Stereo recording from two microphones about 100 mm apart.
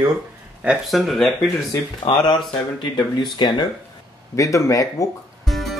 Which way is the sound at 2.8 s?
50° left (ahead or behind).